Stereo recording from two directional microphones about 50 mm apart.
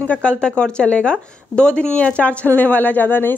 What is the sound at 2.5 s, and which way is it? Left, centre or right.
Speech, left.